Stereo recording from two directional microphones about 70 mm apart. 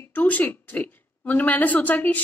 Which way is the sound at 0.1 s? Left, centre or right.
Left.